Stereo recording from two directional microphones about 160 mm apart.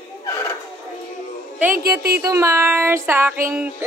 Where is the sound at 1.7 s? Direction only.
75° right (ahead or behind).